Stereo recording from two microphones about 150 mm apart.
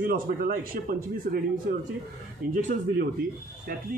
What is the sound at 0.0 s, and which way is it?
A man's voice, 70° right (ahead or behind).